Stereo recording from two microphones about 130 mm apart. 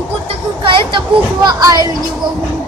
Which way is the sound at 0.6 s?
35° right (ahead or behind).